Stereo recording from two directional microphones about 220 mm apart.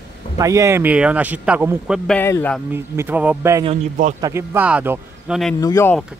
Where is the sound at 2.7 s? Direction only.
10° right (ahead or behind).